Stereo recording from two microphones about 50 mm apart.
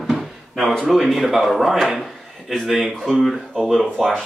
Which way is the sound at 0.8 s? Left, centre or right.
Centre.